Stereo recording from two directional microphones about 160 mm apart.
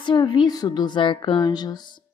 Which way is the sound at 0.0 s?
30° left (ahead or behind).